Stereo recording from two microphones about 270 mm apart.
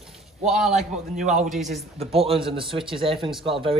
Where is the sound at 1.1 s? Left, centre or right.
Right.